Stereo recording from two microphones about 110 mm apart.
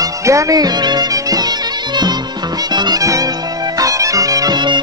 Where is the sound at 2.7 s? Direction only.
40° right (ahead or behind).